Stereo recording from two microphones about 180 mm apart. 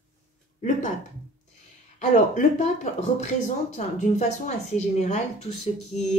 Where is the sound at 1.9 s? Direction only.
40° left (ahead or behind).